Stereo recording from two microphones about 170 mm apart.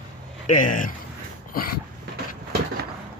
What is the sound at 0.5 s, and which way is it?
Speech, 50° left (ahead or behind).